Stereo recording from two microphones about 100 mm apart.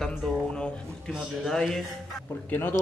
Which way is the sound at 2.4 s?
20° left (ahead or behind).